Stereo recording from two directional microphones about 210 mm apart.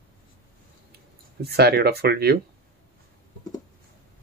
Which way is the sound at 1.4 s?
50° right (ahead or behind).